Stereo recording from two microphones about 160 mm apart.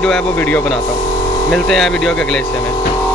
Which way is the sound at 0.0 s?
5° left (ahead or behind).